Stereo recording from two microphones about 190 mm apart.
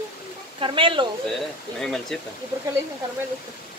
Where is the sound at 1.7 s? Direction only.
5° left (ahead or behind).